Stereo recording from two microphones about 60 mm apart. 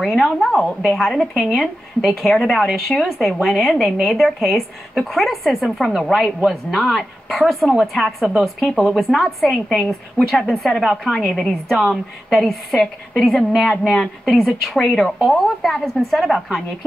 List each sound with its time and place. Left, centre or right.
0.0 s a woman's voice: centre